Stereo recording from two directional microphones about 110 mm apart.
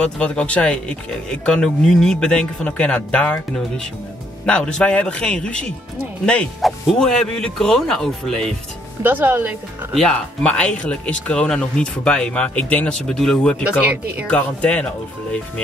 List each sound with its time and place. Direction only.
0.0 s a man's voice: 10° left (ahead or behind)
9.0 s speech: 20° right (ahead or behind)
10.1 s speech: 10° left (ahead or behind)
13.7 s speech: 10° right (ahead or behind)
14.2 s speech: 10° left (ahead or behind)